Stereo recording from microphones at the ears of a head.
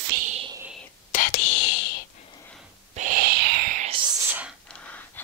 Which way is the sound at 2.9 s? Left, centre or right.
Right.